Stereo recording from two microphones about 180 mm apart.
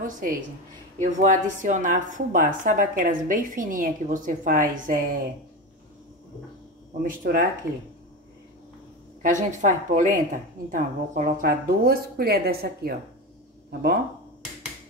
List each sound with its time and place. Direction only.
0.0 s speech: 50° right (ahead or behind)
7.0 s speech: 50° right (ahead or behind)
9.2 s speech: 45° right (ahead or behind); by 12.9 s 60° right (ahead or behind)